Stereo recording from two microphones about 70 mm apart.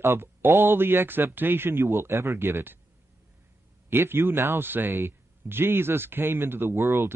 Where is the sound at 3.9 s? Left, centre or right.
Right.